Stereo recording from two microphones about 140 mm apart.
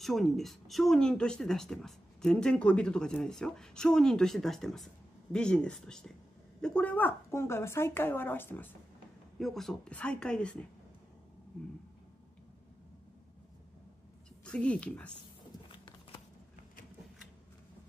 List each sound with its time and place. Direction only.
0.0 s a woman's voice: centre (ahead or behind)
9.4 s a woman's voice: centre (ahead or behind)
14.4 s speech: 10° left (ahead or behind)
15.7 s a sound: 35° left (ahead or behind)